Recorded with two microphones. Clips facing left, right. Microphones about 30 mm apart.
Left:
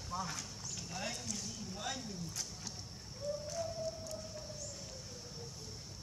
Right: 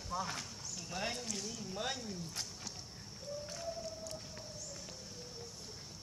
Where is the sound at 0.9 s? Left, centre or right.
Right.